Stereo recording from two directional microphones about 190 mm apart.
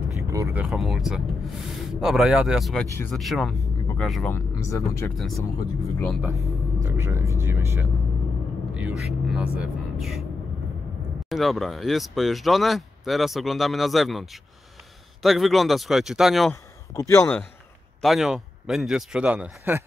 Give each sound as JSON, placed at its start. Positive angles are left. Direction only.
{"t": 0.3, "sound": "speech", "side_deg": -15}
{"t": 4.4, "sound": "speech", "side_deg": 15}
{"t": 5.1, "sound": "speech", "side_deg": 0}
{"t": 6.2, "sound": "speech", "side_deg": -15}
{"t": 11.2, "sound": "speech", "side_deg": 0}
{"t": 16.9, "sound": "speech", "side_deg": 15}
{"t": 18.0, "sound": "speech", "side_deg": 0}